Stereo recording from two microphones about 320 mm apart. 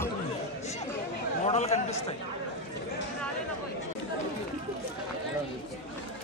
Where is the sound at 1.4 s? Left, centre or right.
Left.